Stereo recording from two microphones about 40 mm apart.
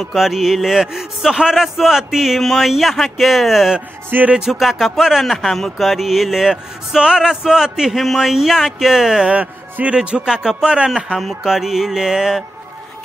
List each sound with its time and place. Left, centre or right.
0.1 s speech: centre
2.4 s speech: centre
4.1 s music: right
4.5 s speech: centre
7.0 s speech: centre
7.9 s speech: centre
9.3 s speech: right
10.0 s a man's voice: centre
11.4 s speech: centre